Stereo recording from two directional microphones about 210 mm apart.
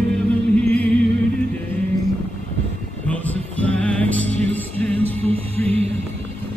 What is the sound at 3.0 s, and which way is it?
Music, 5° left (ahead or behind).